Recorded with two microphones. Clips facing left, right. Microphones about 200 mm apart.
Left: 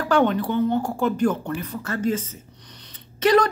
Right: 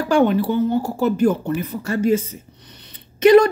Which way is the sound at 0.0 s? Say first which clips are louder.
Right 3 dB; 10° right (ahead or behind).